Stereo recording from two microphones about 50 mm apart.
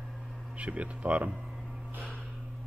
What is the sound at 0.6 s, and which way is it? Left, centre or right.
Speech, right.